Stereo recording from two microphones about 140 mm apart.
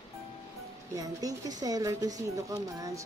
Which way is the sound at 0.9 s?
25° right (ahead or behind).